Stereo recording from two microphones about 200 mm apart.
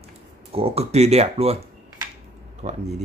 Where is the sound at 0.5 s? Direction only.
30° right (ahead or behind).